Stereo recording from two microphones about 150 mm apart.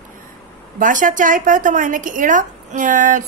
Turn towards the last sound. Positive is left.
turn(degrees=-55)  # may be behind; listen again after turning